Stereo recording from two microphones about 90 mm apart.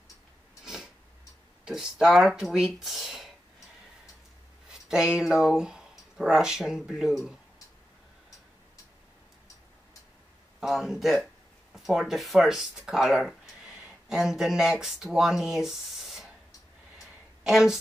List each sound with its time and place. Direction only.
1.6 s speech: 5° right (ahead or behind)
4.6 s speech: 10° right (ahead or behind)
10.6 s speech: 5° right (ahead or behind)
17.4 s speech: 5° right (ahead or behind)